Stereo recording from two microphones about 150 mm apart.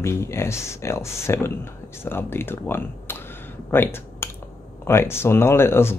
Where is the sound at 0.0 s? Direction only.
15° left (ahead or behind).